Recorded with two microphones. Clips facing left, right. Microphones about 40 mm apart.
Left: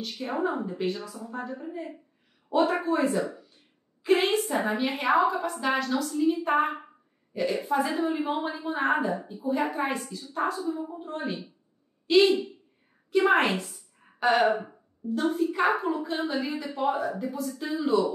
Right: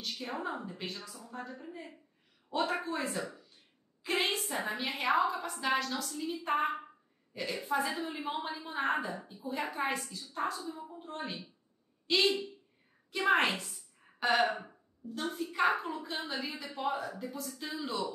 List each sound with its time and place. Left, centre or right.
0.0 s a woman's voice: centre